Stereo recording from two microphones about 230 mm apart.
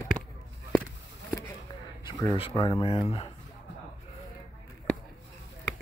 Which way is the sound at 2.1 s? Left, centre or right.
Centre.